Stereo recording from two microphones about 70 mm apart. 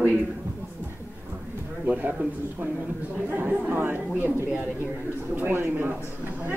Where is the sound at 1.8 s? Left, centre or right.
Right.